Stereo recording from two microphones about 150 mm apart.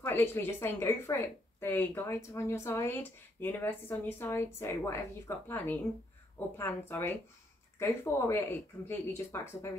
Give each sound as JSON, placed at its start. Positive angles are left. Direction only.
{"t": 0.0, "sound": "a woman's voice", "side_deg": 15}